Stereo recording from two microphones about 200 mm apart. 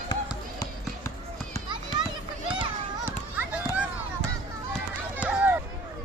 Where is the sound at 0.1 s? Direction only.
20° left (ahead or behind).